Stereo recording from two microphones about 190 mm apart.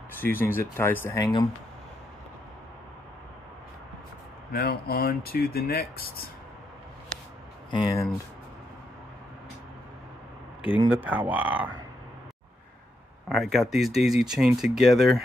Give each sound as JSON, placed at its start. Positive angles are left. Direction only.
{"t": 0.2, "sound": "speech", "side_deg": 10}
{"t": 4.5, "sound": "speech", "side_deg": 55}
{"t": 7.7, "sound": "speech", "side_deg": 25}
{"t": 10.9, "sound": "speech", "side_deg": -10}
{"t": 13.3, "sound": "speech", "side_deg": 0}